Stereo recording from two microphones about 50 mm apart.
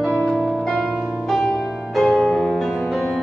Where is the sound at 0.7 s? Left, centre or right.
Centre.